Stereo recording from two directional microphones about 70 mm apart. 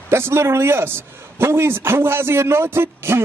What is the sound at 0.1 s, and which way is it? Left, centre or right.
A man's voice, right.